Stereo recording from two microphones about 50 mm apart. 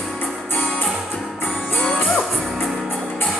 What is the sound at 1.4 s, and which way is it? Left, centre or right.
Music, left.